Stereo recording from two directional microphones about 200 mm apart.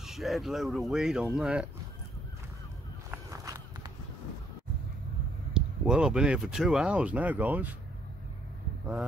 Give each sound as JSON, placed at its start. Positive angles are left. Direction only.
{"t": 0.0, "sound": "speech", "side_deg": 0}
{"t": 3.1, "sound": "walk", "side_deg": -15}
{"t": 5.5, "sound": "speech", "side_deg": -5}